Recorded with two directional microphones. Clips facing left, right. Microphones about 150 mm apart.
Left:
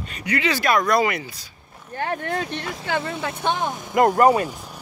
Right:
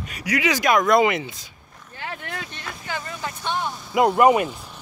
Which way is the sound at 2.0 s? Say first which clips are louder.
Left 8 dB; 50° left (ahead or behind).